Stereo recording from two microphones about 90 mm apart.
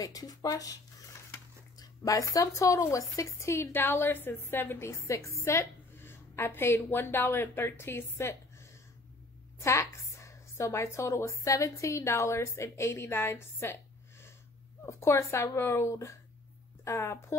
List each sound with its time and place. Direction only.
0.0 s speech: 45° left (ahead or behind)
1.8 s a woman's voice: 40° left (ahead or behind)